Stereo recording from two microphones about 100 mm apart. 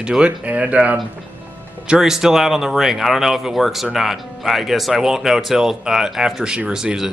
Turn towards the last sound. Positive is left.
turn(degrees=-5)  # may be behind; listen again after turning